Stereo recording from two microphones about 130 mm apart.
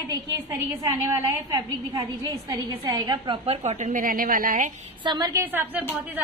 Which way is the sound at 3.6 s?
65° right (ahead or behind).